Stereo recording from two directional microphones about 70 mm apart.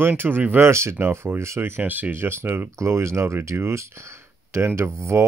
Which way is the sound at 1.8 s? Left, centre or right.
Right.